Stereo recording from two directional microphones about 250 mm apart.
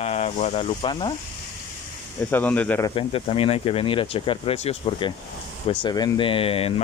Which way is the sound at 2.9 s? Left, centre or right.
Left.